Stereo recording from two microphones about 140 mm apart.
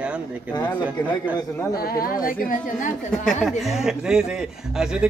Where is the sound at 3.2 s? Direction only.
5° left (ahead or behind).